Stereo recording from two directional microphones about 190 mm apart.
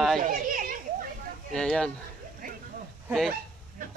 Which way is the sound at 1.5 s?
5° left (ahead or behind).